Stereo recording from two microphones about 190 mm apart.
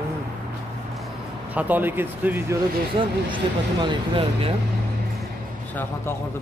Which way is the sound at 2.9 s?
25° right (ahead or behind).